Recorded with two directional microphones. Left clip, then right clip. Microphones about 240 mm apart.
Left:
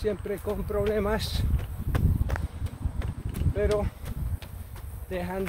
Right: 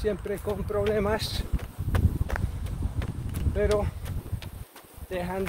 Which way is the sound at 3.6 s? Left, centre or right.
Centre.